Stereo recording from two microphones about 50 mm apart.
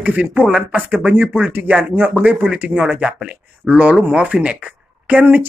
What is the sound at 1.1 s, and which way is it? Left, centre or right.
Speech, right.